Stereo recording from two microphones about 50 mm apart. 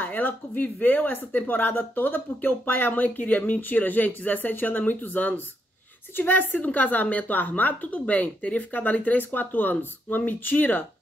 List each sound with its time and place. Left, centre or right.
0.0 s a woman's voice: left